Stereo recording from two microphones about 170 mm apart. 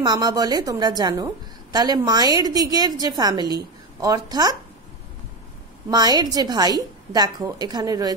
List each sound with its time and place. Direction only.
0.0 s a woman's voice: 25° right (ahead or behind)
5.9 s a woman's voice: 20° right (ahead or behind)